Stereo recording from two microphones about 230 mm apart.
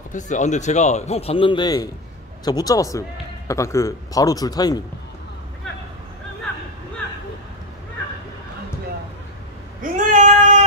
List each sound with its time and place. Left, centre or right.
0.1 s a man's voice: left
9.8 s female singing: right